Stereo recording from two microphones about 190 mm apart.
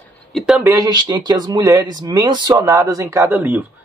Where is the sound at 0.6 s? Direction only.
20° right (ahead or behind).